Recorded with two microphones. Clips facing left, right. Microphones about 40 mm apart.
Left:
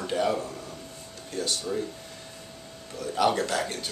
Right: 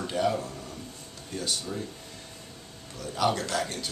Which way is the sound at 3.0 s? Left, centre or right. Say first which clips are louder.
Left 3 dB; centre.